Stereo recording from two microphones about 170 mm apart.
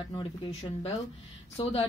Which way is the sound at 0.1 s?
30° left (ahead or behind).